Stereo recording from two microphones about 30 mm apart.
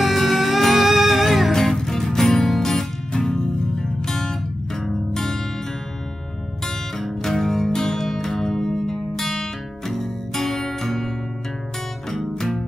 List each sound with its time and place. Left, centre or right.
0.0 s music: centre
1.5 s music: centre
7.3 s music: centre
12.1 s music: centre